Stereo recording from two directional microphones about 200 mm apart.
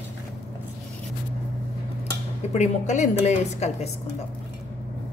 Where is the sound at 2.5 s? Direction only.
35° left (ahead or behind).